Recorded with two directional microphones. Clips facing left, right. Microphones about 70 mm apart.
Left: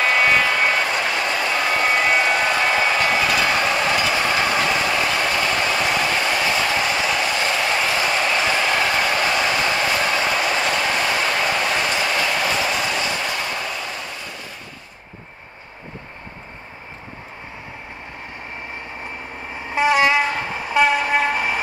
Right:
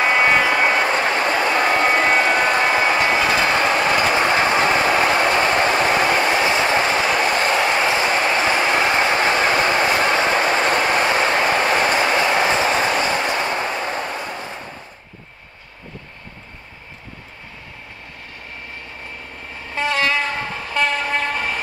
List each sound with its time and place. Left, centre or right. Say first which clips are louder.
0.0 s vehicle: right 1 dB; right
2.7 s train: right 2 dB; right
19.5 s train: left 4 dB; centre